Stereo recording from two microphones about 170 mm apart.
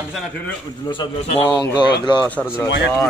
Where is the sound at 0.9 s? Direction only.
35° left (ahead or behind).